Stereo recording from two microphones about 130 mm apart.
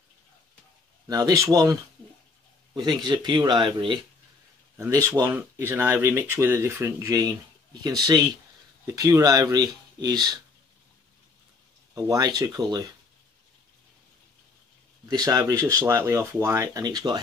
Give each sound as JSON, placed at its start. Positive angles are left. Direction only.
{"t": 1.0, "sound": "speech", "side_deg": -30}
{"t": 4.7, "sound": "speech", "side_deg": -25}
{"t": 5.3, "sound": "speech", "side_deg": -15}
{"t": 11.9, "sound": "speech", "side_deg": -30}
{"t": 15.0, "sound": "speech", "side_deg": -30}